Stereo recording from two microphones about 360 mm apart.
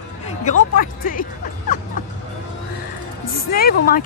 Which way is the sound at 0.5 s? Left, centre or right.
Left.